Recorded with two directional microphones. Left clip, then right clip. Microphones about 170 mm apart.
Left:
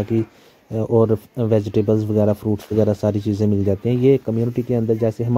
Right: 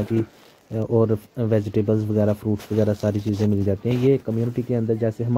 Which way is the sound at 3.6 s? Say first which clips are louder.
Left 4 dB; 35° left (ahead or behind).